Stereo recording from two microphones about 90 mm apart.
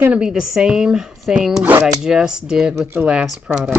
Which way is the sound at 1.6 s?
20° right (ahead or behind).